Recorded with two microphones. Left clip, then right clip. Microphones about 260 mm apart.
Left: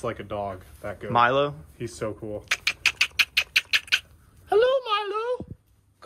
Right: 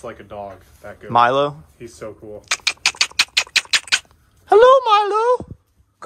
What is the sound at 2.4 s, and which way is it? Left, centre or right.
Rodents, centre.